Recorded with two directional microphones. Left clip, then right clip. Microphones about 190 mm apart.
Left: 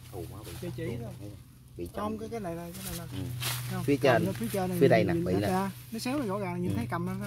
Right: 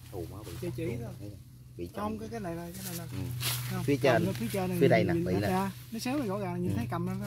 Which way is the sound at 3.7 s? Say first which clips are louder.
Left 2 dB; 10° left (ahead or behind).